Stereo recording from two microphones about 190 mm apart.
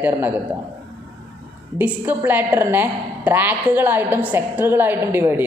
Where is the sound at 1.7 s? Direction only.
10° right (ahead or behind).